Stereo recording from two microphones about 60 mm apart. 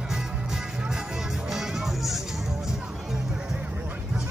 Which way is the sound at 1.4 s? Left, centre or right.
Centre.